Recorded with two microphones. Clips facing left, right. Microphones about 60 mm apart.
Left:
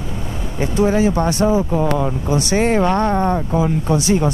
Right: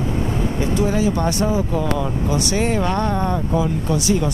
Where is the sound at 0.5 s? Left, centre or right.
Left.